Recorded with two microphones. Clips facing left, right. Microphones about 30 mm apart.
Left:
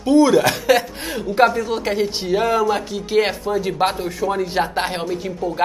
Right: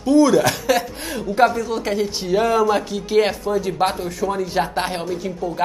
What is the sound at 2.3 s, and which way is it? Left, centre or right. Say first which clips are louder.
A woman's voice: right 1 dB; centre.